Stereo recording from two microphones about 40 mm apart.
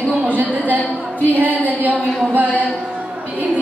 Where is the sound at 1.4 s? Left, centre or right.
Right.